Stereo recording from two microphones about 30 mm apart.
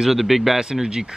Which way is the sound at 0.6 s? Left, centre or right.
Right.